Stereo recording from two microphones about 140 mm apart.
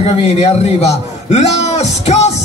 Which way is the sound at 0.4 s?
50° left (ahead or behind).